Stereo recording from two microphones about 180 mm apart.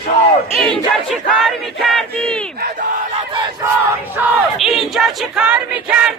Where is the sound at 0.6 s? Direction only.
Centre (ahead or behind).